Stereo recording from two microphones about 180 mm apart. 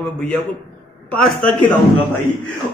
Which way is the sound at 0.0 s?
5° left (ahead or behind).